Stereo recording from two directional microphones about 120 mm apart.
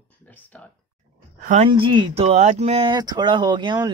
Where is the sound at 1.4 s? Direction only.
90° right.